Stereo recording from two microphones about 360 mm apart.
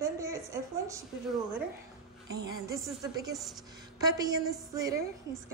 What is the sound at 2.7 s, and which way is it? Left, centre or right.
A woman's voice, centre.